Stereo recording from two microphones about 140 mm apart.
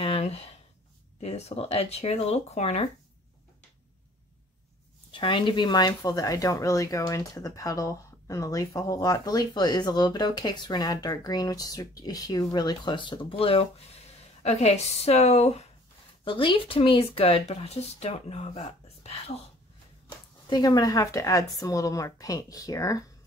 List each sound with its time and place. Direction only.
0.0 s a sound: 45° left (ahead or behind)
1.2 s speech: 50° left (ahead or behind)
5.1 s speech: 35° left (ahead or behind)
16.3 s speech: 35° left (ahead or behind)
20.4 s speech: 30° left (ahead or behind)